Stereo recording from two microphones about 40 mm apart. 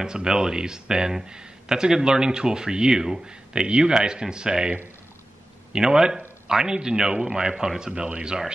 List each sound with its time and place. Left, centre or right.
0.0 s a man's voice: centre
7.9 s speech: right